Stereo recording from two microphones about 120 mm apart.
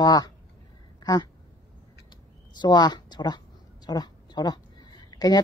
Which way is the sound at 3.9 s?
35° left (ahead or behind).